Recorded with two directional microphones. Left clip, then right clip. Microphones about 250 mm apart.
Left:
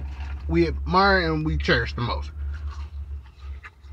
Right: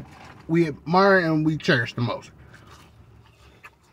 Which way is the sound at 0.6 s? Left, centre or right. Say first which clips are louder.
Even; centre.